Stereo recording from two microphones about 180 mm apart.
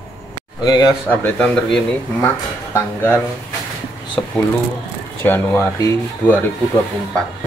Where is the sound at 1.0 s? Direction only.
10° left (ahead or behind).